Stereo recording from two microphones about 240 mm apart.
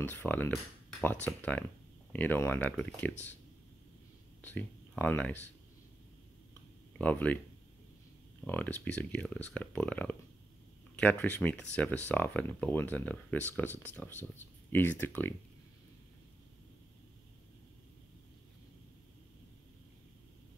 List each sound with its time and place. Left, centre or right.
0.0 s speech: centre
4.4 s speech: centre
7.0 s speech: centre
8.5 s speech: centre